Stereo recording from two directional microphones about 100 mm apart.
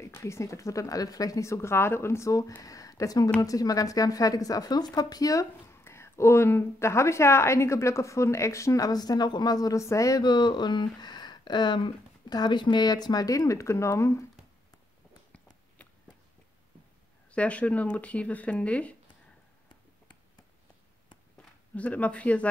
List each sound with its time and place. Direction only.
0.0 s speech: 30° left (ahead or behind)
15.8 s a sound: 10° left (ahead or behind)
17.3 s speech: 15° left (ahead or behind)
21.4 s speech: 15° left (ahead or behind)